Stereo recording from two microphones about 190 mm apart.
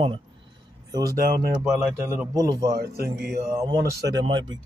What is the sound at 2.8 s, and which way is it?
Speech, 55° right (ahead or behind).